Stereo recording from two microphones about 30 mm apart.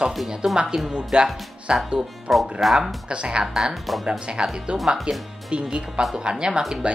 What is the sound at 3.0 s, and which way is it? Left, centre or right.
Speech, right.